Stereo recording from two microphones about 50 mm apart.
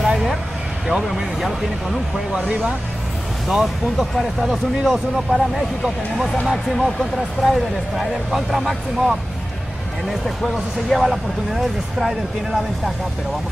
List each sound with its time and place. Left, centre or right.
0.1 s vehicle: centre
1.0 s speech: centre
2.3 s speech: right
3.4 s speech: centre